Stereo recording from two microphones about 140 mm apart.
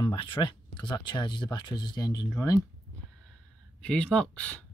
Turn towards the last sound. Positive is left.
turn(degrees=10)  # may be behind; listen again after turning